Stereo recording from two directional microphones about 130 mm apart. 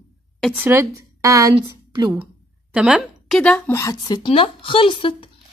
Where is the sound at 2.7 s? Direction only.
5° right (ahead or behind).